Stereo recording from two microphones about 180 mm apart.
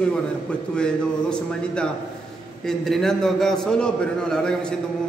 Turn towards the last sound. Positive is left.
turn(degrees=5)  # may be behind; listen again after turning